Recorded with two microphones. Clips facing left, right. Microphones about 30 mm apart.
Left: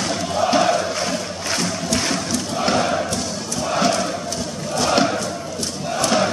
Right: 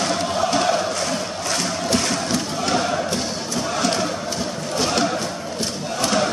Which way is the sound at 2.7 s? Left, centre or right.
Centre.